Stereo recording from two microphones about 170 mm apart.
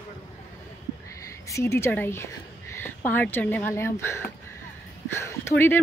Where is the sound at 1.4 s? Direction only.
15° left (ahead or behind).